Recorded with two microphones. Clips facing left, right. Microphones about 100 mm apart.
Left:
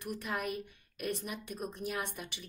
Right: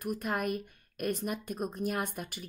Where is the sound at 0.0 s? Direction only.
45° right (ahead or behind).